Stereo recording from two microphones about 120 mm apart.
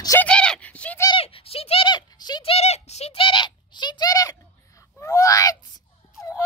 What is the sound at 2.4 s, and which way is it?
A child's voice, 60° left (ahead or behind).